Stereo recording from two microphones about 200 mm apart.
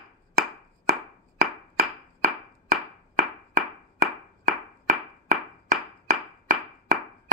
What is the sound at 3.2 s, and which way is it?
Clapping, 35° right (ahead or behind).